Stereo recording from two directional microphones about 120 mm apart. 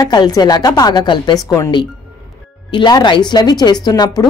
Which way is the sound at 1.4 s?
25° left (ahead or behind).